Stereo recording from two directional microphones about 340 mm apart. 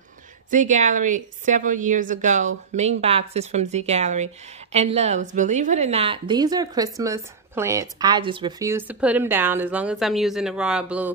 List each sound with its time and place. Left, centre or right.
0.5 s a woman's voice: right; by 11.1 s centre